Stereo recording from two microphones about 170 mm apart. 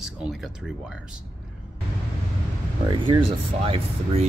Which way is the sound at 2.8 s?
30° right (ahead or behind).